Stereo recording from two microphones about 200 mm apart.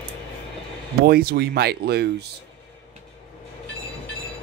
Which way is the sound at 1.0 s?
50° right (ahead or behind).